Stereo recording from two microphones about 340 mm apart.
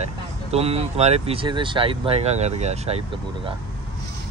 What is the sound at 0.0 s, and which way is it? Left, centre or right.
Speech, centre.